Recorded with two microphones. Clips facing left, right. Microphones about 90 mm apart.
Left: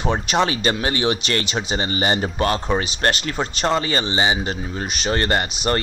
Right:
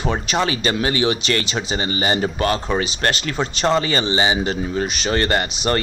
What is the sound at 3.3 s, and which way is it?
Speech, 15° left (ahead or behind).